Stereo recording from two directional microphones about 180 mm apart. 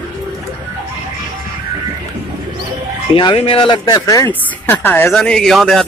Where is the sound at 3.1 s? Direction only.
30° left (ahead or behind); by 5.8 s centre (ahead or behind).